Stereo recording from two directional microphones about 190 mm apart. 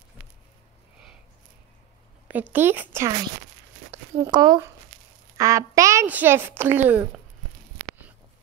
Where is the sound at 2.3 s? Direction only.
10° right (ahead or behind).